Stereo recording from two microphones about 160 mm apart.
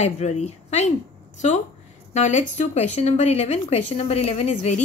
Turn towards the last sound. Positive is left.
turn(degrees=45)  # may be behind; listen again after turning